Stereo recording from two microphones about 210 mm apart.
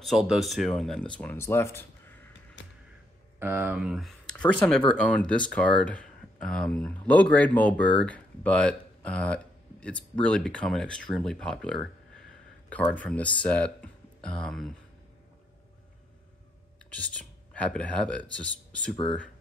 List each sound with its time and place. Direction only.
0.0 s speech: centre (ahead or behind)
2.6 s a sound: 60° left (ahead or behind)
3.3 s speech: 10° right (ahead or behind)
16.9 s speech: 5° left (ahead or behind)